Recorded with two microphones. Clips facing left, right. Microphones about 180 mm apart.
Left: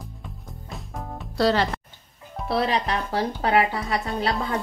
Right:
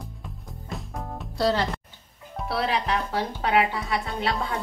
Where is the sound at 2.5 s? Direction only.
35° left (ahead or behind).